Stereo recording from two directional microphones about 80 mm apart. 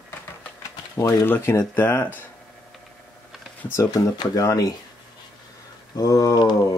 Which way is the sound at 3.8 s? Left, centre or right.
Left.